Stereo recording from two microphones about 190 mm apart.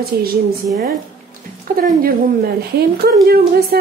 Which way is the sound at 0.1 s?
55° right (ahead or behind).